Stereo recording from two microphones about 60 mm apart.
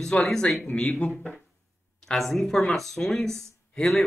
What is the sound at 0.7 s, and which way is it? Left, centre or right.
Speech, left.